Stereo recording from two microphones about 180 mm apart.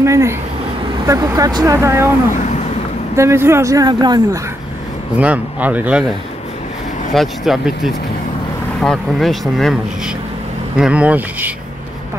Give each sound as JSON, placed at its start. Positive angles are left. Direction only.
{"t": 0.0, "sound": "speech", "side_deg": -15}
{"t": 3.2, "sound": "speech", "side_deg": -15}
{"t": 5.1, "sound": "speech", "side_deg": -10}
{"t": 7.2, "sound": "speech", "side_deg": 0}